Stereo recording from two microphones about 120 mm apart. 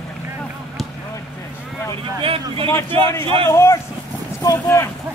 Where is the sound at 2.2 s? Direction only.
50° right (ahead or behind).